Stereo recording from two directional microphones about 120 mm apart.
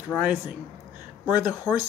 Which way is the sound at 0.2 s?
15° right (ahead or behind).